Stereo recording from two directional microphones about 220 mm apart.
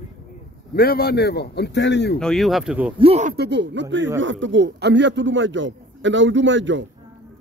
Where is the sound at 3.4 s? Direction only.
50° right (ahead or behind).